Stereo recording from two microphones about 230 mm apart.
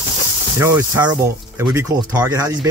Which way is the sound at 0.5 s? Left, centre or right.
Centre.